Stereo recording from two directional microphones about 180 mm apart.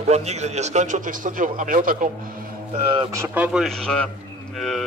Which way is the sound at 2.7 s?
30° right (ahead or behind).